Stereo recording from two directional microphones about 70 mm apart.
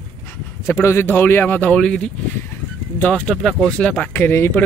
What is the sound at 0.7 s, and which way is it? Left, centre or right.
Speech, left.